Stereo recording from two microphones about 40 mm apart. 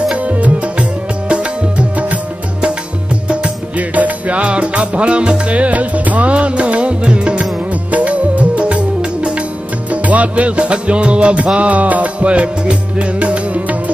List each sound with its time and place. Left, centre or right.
0.2 s music: right
1.3 s music: right
3.7 s music: right
7.9 s music: right